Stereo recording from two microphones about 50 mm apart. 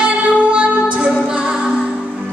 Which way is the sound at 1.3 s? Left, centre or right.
Right.